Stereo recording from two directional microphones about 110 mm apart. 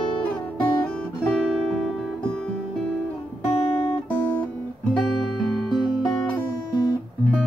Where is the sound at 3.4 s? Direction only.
20° left (ahead or behind).